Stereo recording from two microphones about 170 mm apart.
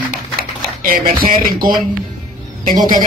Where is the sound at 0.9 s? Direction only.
55° right (ahead or behind).